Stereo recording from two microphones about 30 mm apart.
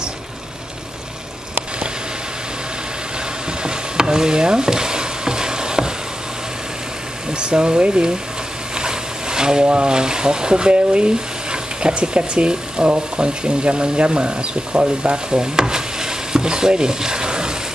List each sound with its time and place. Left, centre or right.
3.6 s stir: right
7.3 s speech: right
8.7 s a sound: right
9.7 s speech: right
15.4 s stir: right